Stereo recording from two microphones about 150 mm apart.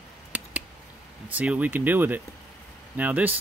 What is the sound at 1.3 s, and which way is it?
Speech, 10° right (ahead or behind).